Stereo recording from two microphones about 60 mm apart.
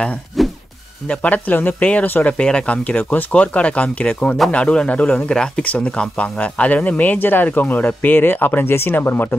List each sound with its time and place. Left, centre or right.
0.3 s music: centre
1.0 s speech: left
2.3 s speech: centre; by 9.3 s left